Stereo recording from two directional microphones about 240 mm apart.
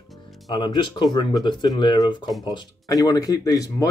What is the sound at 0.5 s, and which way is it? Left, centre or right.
Speech, centre.